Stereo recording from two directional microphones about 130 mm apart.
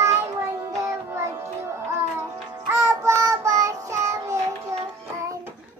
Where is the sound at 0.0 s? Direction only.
20° right (ahead or behind).